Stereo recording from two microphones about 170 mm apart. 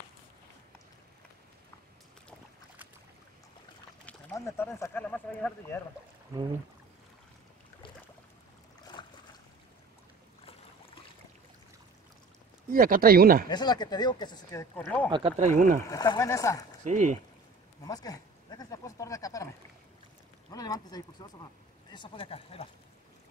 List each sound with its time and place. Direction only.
4.5 s speech: 15° left (ahead or behind)
8.9 s boat: 25° left (ahead or behind)
12.6 s speech: 55° right (ahead or behind)
13.5 s speech: 25° left (ahead or behind)
15.0 s speech: 30° right (ahead or behind)
15.3 s speech: 45° right (ahead or behind)
15.9 s speech: 20° left (ahead or behind)
16.8 s speech: 50° right (ahead or behind)
17.8 s speech: 20° left (ahead or behind)
20.5 s speech: 20° left (ahead or behind)